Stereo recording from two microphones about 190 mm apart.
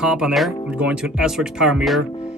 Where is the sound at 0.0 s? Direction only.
5° right (ahead or behind).